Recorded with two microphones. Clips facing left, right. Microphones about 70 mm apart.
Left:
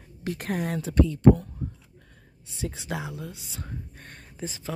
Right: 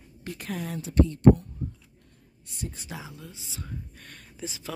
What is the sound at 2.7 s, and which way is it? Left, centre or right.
Speech, left.